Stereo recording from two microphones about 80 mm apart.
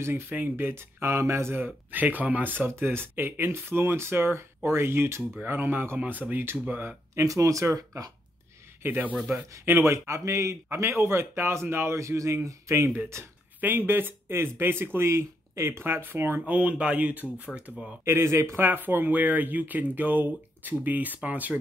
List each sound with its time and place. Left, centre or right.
0.0 s speech: right
7.2 s speech: right
8.8 s speech: right
13.6 s speech: right
18.0 s speech: right